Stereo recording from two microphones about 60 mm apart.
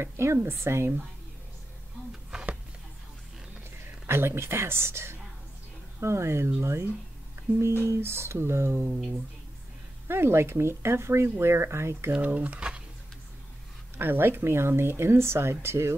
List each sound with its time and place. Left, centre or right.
0.0 s speech: right
4.1 s speech: right
7.4 s music: right
7.8 s speech: right
10.0 s speech: right
12.1 s speech: right
13.9 s speech: right